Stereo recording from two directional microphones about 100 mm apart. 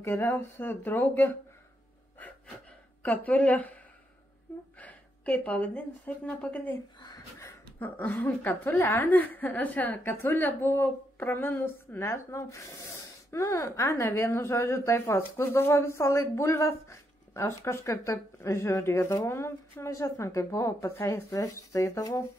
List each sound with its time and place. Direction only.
0.0 s a woman's voice: 25° left (ahead or behind)
3.0 s a woman's voice: 15° left (ahead or behind)
7.8 s a woman's voice: 15° left (ahead or behind)